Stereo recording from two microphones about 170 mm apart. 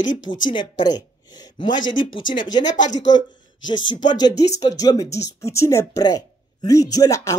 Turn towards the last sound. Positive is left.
turn(degrees=15)  # may be behind; listen again after turning